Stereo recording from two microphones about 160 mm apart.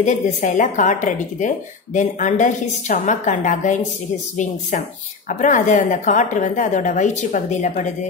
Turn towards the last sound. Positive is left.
turn(degrees=50)  # may be behind; listen again after turning